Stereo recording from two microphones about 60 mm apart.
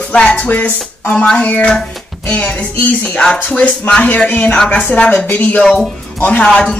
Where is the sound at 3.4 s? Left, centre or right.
Left.